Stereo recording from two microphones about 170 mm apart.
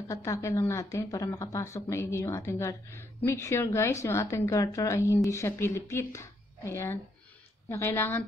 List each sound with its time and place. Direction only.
0.1 s speech: 20° left (ahead or behind)